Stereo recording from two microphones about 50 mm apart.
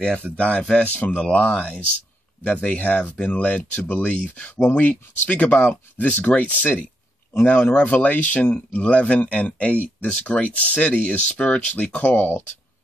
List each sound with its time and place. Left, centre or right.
0.0 s speech: centre
0.9 s speech: left